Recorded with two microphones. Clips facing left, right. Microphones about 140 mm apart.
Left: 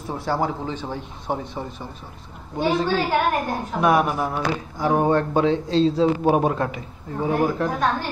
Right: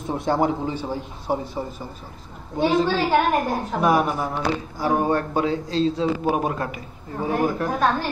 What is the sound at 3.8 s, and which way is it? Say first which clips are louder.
Speech: left 1 dB; 5° left (ahead or behind).